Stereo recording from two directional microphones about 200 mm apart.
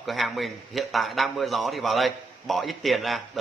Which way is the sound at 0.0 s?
Centre (ahead or behind).